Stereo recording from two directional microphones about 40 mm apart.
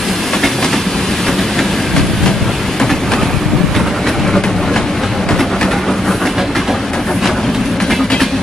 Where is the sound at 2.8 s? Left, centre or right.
Centre.